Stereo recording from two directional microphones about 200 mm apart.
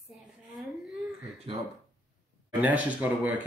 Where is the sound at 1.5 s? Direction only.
25° right (ahead or behind).